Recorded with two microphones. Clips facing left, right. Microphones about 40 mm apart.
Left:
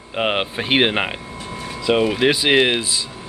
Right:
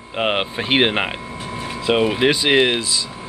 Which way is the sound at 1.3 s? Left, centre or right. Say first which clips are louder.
Right 2 dB; right.